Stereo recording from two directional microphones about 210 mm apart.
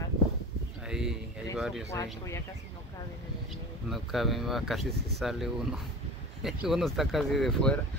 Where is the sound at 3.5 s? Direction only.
Centre (ahead or behind).